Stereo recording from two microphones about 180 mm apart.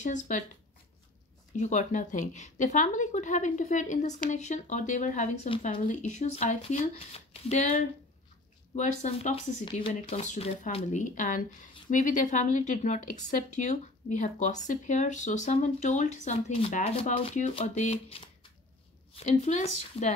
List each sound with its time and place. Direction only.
0.0 s a woman's voice: 40° left (ahead or behind)
1.6 s a woman's voice: 45° left (ahead or behind)
8.7 s a woman's voice: 40° left (ahead or behind)